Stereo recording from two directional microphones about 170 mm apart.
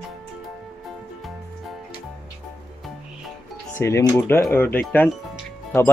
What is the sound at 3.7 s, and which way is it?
Speech, 15° left (ahead or behind).